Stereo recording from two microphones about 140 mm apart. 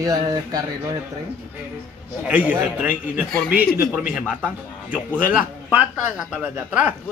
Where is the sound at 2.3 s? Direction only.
10° right (ahead or behind).